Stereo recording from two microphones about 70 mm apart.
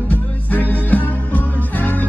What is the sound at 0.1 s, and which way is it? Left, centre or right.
Music, left.